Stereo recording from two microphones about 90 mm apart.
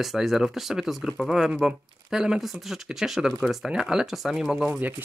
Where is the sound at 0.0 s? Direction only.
5° right (ahead or behind).